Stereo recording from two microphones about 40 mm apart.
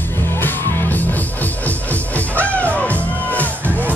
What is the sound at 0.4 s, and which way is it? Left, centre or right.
Music, left.